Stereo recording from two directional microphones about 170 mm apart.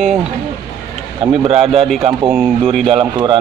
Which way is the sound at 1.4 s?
35° right (ahead or behind).